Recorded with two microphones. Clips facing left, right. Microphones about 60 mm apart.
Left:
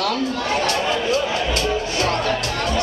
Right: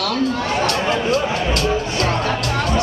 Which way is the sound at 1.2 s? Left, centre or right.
Right.